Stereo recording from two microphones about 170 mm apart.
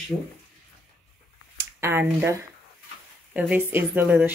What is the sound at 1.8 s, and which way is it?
Speech, 15° right (ahead or behind).